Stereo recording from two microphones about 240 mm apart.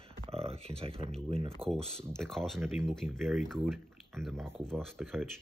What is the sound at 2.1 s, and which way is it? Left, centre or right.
Speech, centre.